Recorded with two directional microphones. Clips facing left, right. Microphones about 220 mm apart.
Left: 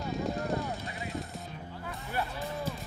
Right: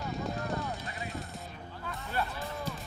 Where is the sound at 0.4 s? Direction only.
30° left (ahead or behind).